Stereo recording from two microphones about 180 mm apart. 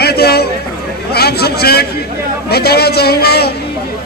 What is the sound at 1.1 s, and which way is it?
A man's voice, 60° left (ahead or behind).